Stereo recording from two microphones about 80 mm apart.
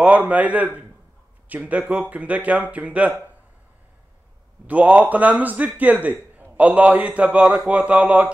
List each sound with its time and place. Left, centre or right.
0.0 s speech: centre
1.7 s a man's voice: centre
4.6 s a man's voice: centre